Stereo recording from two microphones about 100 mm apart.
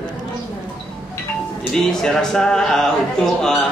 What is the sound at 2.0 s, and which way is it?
Speech, 5° left (ahead or behind).